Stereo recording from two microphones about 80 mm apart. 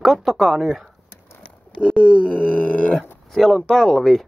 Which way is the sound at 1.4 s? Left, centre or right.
Centre.